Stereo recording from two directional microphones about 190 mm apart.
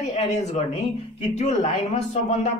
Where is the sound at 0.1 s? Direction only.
35° left (ahead or behind).